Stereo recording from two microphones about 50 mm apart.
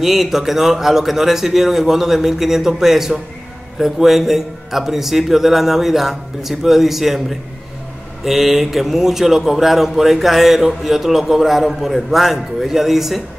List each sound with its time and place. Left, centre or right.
0.0 s speech: centre